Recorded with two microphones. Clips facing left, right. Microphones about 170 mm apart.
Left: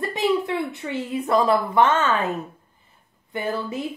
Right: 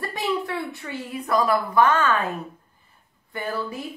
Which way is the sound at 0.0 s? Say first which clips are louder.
Left 5 dB; 20° left (ahead or behind).